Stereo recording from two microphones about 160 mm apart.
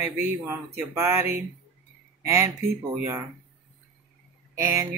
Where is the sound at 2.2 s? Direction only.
15° right (ahead or behind).